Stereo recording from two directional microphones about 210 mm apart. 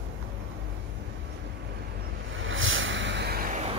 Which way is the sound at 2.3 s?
65° right (ahead or behind).